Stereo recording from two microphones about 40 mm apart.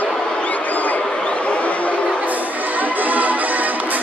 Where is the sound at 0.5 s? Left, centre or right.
Left.